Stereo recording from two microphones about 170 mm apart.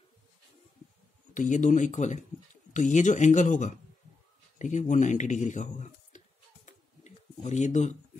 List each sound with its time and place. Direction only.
1.3 s speech: 45° left (ahead or behind)
4.6 s a sound: 45° left (ahead or behind)
7.4 s speech: 45° left (ahead or behind)